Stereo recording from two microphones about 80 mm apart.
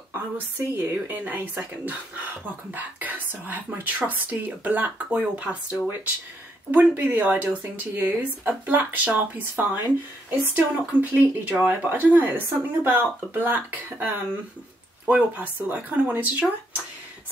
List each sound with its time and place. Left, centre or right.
0.1 s speech: right